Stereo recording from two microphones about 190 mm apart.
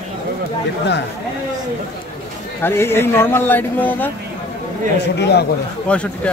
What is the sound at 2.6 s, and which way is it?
Speech, 10° left (ahead or behind).